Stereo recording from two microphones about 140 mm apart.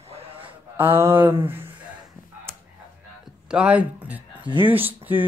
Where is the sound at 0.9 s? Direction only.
15° right (ahead or behind).